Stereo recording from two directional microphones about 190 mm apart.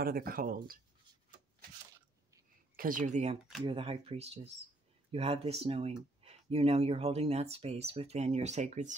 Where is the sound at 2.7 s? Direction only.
45° right (ahead or behind).